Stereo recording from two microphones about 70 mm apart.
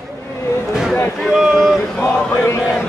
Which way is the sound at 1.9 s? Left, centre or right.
Centre.